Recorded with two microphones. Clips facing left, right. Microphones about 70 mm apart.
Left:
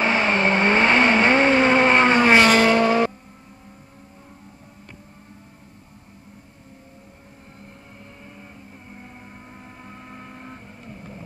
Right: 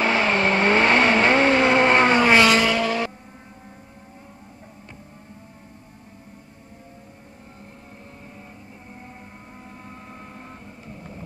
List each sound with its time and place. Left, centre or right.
0.0 s vehicle: centre
2.4 s vehicle: left
9.8 s vehicle: left